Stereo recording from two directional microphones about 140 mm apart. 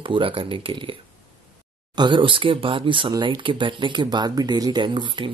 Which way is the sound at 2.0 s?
35° right (ahead or behind).